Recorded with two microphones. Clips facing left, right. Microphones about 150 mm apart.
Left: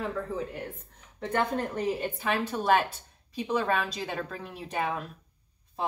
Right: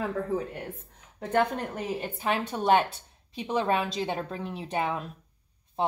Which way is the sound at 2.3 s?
25° right (ahead or behind).